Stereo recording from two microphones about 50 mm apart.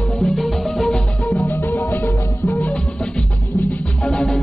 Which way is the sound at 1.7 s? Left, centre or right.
Left.